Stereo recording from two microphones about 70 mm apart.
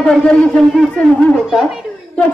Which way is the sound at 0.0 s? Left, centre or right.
Centre.